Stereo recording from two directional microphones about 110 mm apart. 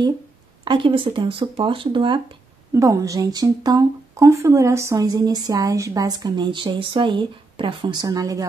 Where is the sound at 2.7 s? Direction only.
30° right (ahead or behind).